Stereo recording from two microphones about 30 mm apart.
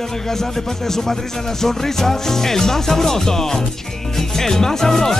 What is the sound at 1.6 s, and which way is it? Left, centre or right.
Speech, centre.